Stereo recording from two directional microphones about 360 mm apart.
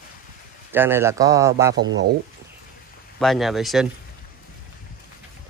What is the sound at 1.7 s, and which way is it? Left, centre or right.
Speech, right.